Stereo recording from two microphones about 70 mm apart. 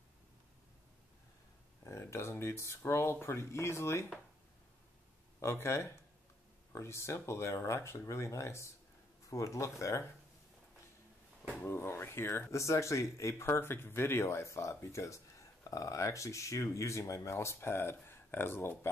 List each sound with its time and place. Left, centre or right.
1.9 s speech: left
5.4 s speech: left
11.6 s speech: left